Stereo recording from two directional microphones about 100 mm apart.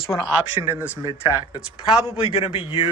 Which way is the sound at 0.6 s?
20° right (ahead or behind).